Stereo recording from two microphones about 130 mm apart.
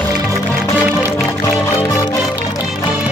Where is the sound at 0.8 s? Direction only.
10° right (ahead or behind).